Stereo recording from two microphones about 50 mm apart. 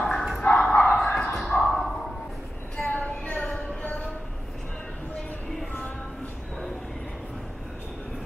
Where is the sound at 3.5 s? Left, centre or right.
Left.